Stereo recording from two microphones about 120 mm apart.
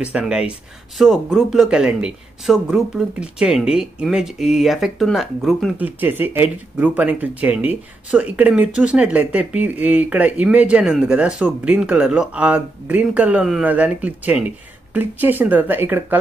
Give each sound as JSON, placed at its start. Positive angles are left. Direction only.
{"t": 0.0, "sound": "a man's voice", "side_deg": -10}
{"t": 5.8, "sound": "speech", "side_deg": -15}